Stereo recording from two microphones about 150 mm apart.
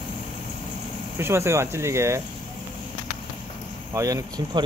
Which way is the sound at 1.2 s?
15° right (ahead or behind).